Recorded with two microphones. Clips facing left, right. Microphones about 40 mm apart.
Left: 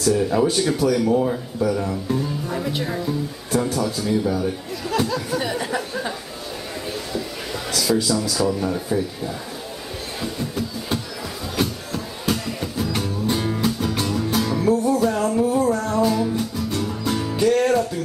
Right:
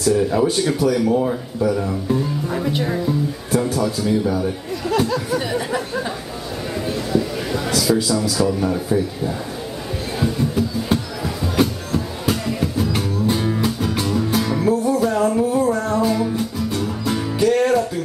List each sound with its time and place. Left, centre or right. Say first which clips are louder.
0.0 s speech: right 2 dB; centre
7.1 s a man's voice: right 7 dB; centre
10.2 s music: right 7 dB; centre